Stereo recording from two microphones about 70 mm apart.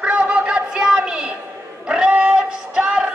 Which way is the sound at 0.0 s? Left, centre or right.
Centre.